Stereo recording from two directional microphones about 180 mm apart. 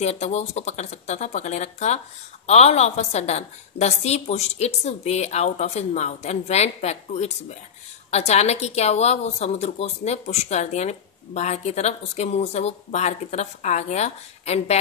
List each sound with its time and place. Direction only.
0.0 s a woman's voice: 40° left (ahead or behind)